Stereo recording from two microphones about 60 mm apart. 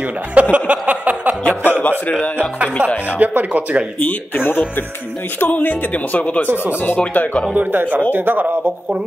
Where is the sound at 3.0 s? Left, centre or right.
Right.